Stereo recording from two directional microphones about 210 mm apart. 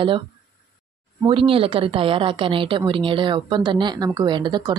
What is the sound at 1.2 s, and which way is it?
A woman's voice, 25° right (ahead or behind).